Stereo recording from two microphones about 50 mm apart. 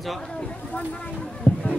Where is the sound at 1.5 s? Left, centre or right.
Left.